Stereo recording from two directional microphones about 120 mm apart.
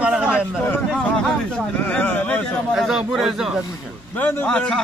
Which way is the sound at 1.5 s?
15° left (ahead or behind).